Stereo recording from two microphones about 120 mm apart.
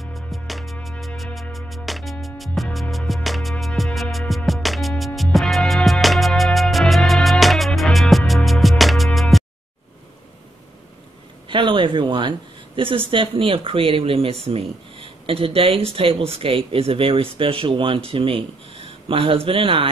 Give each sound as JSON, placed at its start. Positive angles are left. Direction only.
{"t": 0.0, "sound": "music", "side_deg": 0}
{"t": 11.4, "sound": "speech", "side_deg": -45}